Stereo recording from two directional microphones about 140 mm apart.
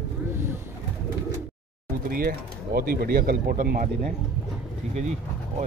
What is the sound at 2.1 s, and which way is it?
Speech, 90° right.